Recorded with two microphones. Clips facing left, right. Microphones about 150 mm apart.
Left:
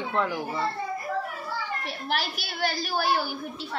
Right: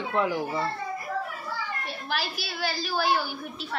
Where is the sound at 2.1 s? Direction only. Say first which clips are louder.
Left 1 dB; 55° left (ahead or behind).